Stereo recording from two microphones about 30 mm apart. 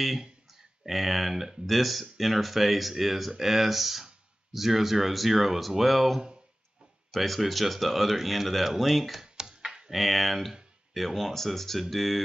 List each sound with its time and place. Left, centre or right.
0.5 s speech: centre
9.2 s computer keyboard: right
9.8 s speech: centre